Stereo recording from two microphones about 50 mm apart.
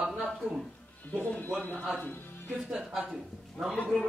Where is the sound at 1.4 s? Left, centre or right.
Left.